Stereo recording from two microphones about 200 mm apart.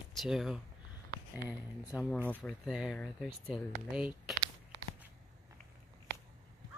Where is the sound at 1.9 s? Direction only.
5° right (ahead or behind).